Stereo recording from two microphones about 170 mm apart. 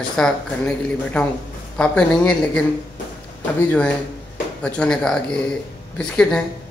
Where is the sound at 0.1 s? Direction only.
5° left (ahead or behind).